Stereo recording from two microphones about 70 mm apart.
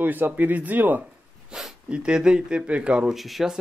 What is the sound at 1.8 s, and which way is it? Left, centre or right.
Speech, centre.